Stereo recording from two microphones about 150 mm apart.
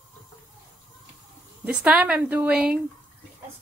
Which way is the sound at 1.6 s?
10° right (ahead or behind).